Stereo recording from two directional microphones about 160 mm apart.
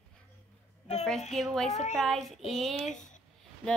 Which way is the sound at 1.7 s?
45° left (ahead or behind).